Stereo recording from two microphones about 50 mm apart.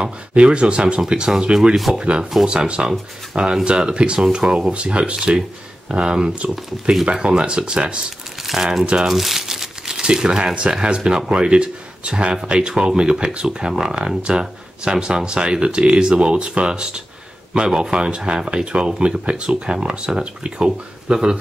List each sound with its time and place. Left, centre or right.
0.3 s speech: right
8.5 s speech: centre